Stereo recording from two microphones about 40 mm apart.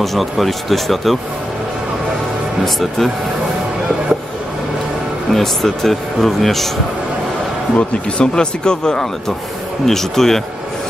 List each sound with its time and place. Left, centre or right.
0.0 s a man's voice: centre
2.6 s a man's voice: centre
5.3 s a man's voice: centre
7.7 s speech: left
9.8 s speech: centre